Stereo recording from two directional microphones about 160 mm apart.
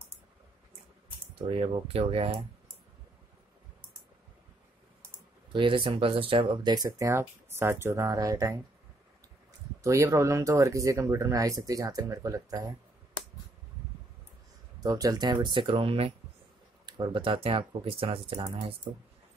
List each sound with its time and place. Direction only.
1.3 s speech: 35° right (ahead or behind)
5.5 s speech: 30° right (ahead or behind)
9.8 s speech: 20° right (ahead or behind)
14.8 s speech: 20° right (ahead or behind)